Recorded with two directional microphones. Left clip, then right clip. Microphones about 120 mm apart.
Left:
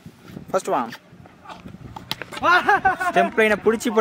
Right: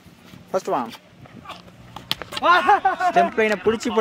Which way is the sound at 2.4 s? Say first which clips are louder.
Right 1 dB; 40° left (ahead or behind).